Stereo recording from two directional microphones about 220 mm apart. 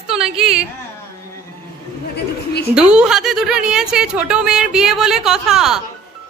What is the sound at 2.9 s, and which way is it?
Speech, 5° right (ahead or behind).